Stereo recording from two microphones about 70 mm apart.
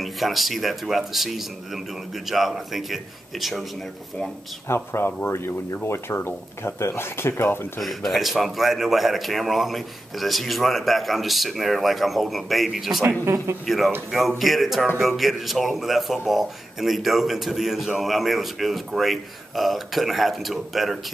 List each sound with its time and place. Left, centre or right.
0.0 s speech: centre
4.6 s speech: left
7.8 s speech: centre
13.2 s speech: right
13.7 s speech: centre